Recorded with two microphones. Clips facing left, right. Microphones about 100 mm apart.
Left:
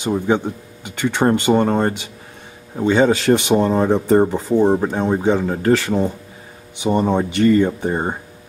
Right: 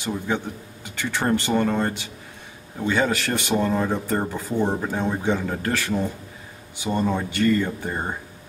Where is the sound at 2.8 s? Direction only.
25° left (ahead or behind).